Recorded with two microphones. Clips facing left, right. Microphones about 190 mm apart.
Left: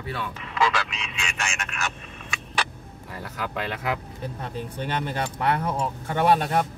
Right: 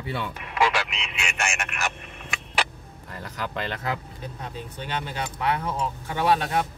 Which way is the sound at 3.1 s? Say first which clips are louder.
Left 1 dB; 5° left (ahead or behind).